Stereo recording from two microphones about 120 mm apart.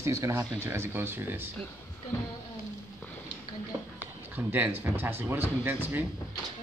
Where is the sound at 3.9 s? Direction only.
15° right (ahead or behind).